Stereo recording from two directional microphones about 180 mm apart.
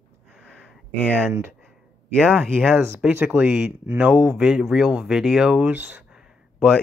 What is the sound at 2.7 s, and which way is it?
Speech, 15° right (ahead or behind).